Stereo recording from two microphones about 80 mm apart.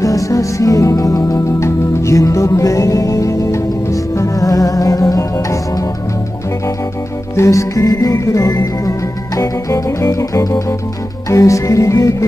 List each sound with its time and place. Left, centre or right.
0.0 s music: left
7.3 s music: left